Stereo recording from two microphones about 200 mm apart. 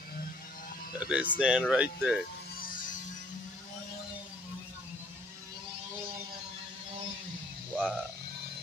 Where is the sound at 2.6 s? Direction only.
40° left (ahead or behind).